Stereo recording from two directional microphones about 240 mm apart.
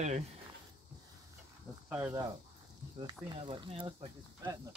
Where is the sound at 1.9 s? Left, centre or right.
Centre.